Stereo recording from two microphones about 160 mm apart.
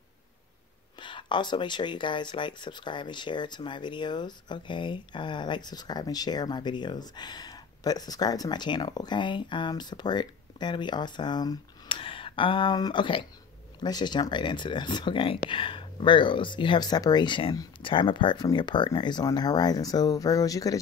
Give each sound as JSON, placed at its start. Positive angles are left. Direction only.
{"t": 0.9, "sound": "speech", "side_deg": 30}